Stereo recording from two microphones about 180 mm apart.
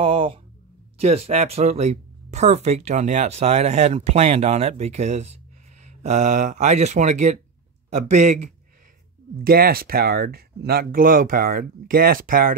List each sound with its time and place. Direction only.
0.0 s a sound: 30° right (ahead or behind)
0.9 s speech: 35° right (ahead or behind)
9.4 s speech: 55° right (ahead or behind)